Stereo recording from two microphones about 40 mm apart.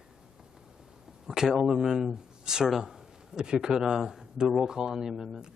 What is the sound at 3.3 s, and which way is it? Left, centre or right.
Speech, centre.